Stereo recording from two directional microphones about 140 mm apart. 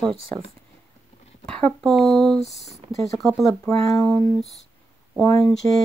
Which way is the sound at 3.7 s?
20° left (ahead or behind).